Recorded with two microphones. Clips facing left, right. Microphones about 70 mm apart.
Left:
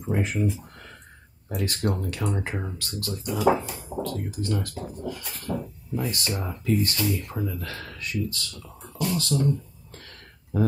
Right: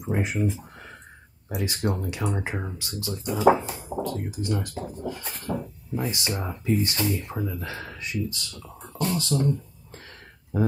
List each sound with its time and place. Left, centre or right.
0.0 s speech: centre
3.3 s speech: right
8.9 s a sound: right
9.3 s speech: right